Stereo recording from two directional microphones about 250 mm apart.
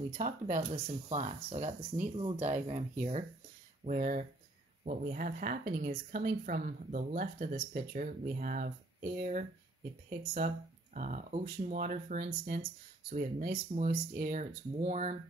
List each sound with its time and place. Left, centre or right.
0.6 s a woman's voice: right